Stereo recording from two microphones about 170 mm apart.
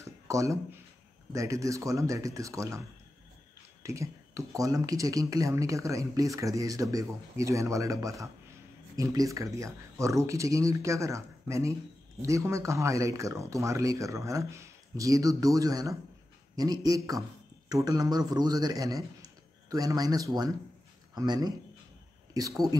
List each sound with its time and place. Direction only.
0.0 s a sound: 20° right (ahead or behind)
1.3 s speech: 20° right (ahead or behind)
3.8 s a man's voice: 20° right (ahead or behind)